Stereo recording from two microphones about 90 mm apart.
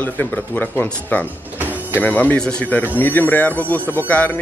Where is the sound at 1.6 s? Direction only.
20° right (ahead or behind).